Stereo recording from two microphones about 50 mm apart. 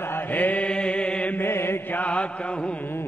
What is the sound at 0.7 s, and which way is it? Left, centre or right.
Mantra, centre.